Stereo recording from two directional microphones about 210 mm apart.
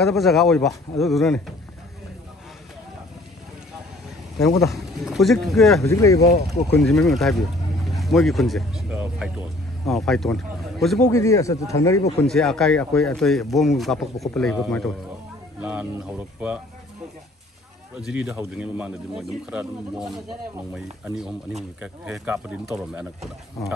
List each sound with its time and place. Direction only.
0.0 s a man's voice: centre (ahead or behind)
4.5 s a man's voice: centre (ahead or behind)
5.9 s a man's voice: 15° left (ahead or behind)
6.8 s speech: centre (ahead or behind)
11.0 s a man's voice: 15° left (ahead or behind)
12.3 s a man's voice: centre (ahead or behind)
15.6 s speech: 5° right (ahead or behind)
17.9 s a man's voice: 5° right (ahead or behind)